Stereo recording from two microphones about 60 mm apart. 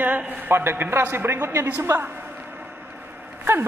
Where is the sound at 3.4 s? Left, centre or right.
Right.